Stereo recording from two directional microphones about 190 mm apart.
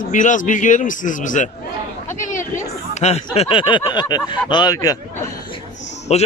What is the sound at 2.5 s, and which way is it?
Speech, 35° left (ahead or behind).